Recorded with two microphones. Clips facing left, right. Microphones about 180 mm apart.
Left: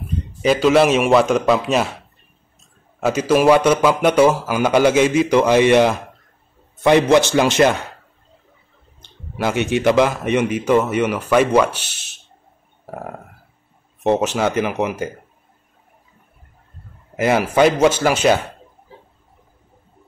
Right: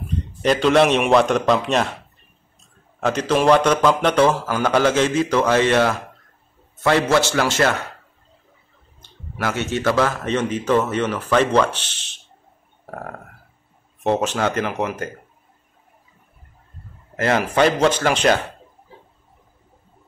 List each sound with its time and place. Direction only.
0.4 s a man's voice: 5° left (ahead or behind)
3.0 s speech: 10° left (ahead or behind)
9.0 s speech: 20° left (ahead or behind)
12.8 s a sound: 5° left (ahead or behind)
14.0 s speech: 10° left (ahead or behind)
17.2 s speech: 10° left (ahead or behind)